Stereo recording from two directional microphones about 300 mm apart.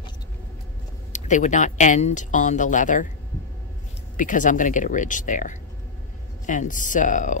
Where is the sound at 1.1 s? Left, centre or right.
Left.